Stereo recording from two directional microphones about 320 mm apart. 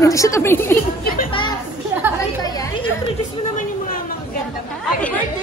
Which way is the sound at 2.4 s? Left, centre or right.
Centre.